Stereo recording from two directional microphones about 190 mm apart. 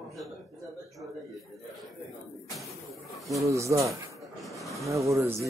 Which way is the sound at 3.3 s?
15° right (ahead or behind).